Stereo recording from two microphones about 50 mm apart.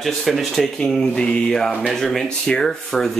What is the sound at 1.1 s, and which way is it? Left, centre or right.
Mantra, centre.